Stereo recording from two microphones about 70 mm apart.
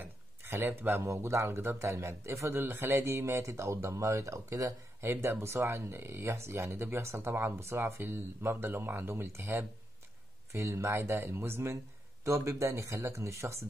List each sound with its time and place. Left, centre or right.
0.0 s a sound: right
1.0 s speech: right
2.6 s speech: right
5.0 s speech: right